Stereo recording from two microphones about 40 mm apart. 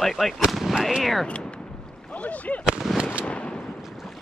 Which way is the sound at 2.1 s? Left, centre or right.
Left.